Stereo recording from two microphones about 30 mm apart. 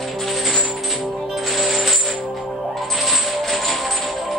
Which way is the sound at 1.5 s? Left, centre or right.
Centre.